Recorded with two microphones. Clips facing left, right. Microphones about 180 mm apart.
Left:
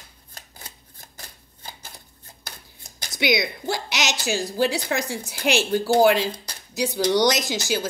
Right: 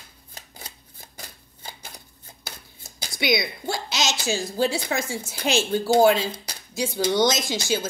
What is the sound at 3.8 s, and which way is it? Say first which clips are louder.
Speech: even; 15° left (ahead or behind).